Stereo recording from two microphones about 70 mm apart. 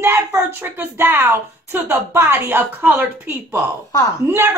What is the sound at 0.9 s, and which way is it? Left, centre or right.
A woman's voice, right.